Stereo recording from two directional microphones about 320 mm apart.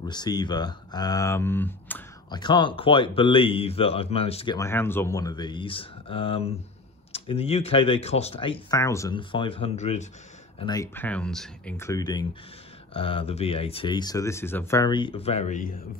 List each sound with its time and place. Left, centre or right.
0.0 s speech: centre